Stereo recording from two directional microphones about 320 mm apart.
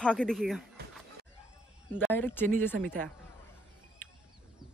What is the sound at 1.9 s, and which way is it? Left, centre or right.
Speech, centre.